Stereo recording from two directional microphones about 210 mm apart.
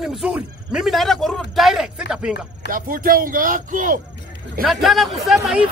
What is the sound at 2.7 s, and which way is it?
Speech, 40° right (ahead or behind).